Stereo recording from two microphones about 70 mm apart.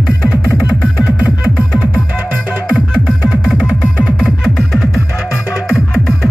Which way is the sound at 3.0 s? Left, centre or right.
Centre.